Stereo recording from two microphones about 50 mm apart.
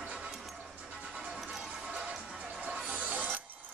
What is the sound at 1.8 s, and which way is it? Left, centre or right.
Music, right.